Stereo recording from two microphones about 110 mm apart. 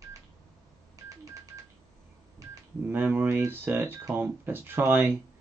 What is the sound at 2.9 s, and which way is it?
Speech, 20° right (ahead or behind).